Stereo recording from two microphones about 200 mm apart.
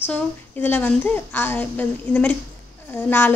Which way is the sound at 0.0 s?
10° left (ahead or behind).